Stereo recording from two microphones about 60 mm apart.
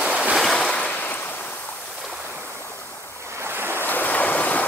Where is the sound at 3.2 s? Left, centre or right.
Right.